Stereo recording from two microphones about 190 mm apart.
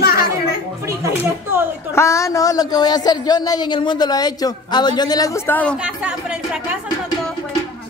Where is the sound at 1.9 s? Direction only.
15° left (ahead or behind).